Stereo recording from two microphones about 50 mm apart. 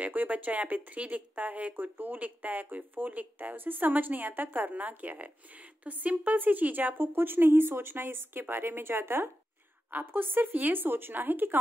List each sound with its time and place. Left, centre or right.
0.0 s a woman's voice: right